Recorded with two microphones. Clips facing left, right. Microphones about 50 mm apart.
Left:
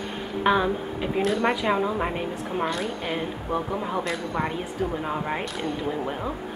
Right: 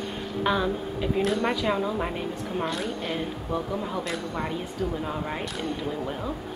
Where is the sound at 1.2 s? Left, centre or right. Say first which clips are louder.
Left 3 dB; centre.